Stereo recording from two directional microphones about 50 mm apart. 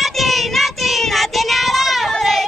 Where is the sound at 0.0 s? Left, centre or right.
Centre.